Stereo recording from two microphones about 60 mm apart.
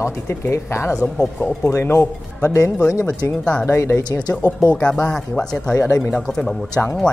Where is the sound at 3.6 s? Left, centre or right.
Left.